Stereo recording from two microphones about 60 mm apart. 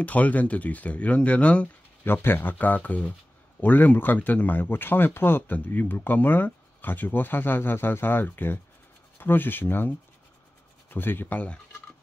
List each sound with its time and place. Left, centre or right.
0.0 s speech: left
2.0 s speech: left